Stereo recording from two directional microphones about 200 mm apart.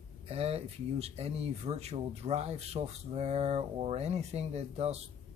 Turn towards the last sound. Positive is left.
turn(degrees=-30)  # may be behind; listen again after turning